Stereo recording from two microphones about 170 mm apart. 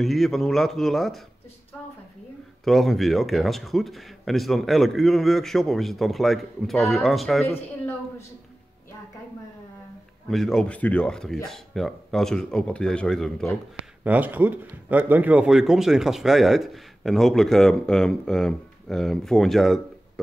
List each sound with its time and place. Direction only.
0.0 s speech: centre (ahead or behind)
2.6 s speech: centre (ahead or behind)
7.4 s speech: 10° left (ahead or behind)
10.3 s speech: centre (ahead or behind)
14.0 s speech: 10° right (ahead or behind)